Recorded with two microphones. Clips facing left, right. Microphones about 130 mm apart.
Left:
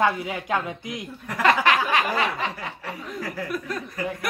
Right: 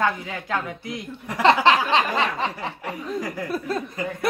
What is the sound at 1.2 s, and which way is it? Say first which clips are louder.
Speech: right 3 dB; 20° right (ahead or behind).